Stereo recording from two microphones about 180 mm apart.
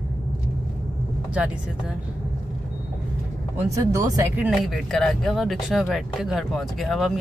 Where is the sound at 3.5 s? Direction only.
15° right (ahead or behind).